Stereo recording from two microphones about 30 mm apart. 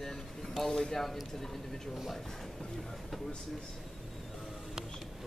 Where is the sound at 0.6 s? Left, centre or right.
Left.